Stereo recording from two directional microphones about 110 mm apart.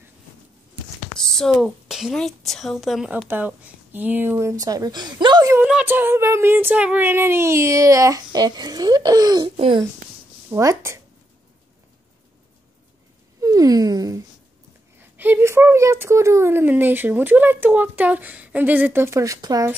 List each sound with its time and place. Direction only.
1.1 s a woman's voice: 5° left (ahead or behind)
3.3 s speech: 15° right (ahead or behind); by 5.5 s 40° right (ahead or behind)
5.9 s speech: 20° right (ahead or behind); by 9.5 s 35° right (ahead or behind)
9.6 s a child's voice: 55° right (ahead or behind)
10.5 s speech: 25° right (ahead or behind)
13.4 s speech: 30° right (ahead or behind)
15.0 s speech: 20° right (ahead or behind); by 19.7 s 35° right (ahead or behind)